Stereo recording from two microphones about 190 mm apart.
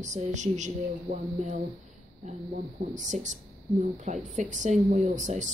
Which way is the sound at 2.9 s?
40° right (ahead or behind).